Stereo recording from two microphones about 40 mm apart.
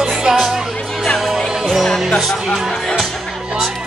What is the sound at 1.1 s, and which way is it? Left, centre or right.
Music, centre.